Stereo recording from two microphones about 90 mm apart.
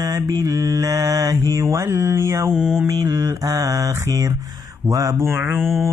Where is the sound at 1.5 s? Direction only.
35° right (ahead or behind).